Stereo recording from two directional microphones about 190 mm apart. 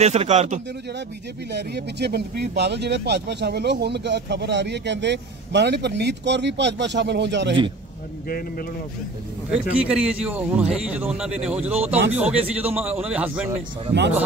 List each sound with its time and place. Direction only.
0.0 s a man's voice: 35° right (ahead or behind)
1.5 s a man's voice: 60° right (ahead or behind)
8.3 s speech: 50° left (ahead or behind)
9.5 s a man's voice: 5° right (ahead or behind)